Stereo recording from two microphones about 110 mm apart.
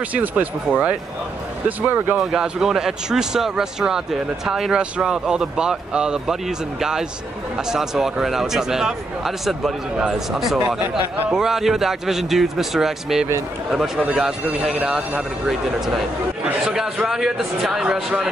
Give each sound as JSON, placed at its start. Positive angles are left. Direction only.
{"t": 0.1, "sound": "speech", "side_deg": -15}
{"t": 2.1, "sound": "speech", "side_deg": -5}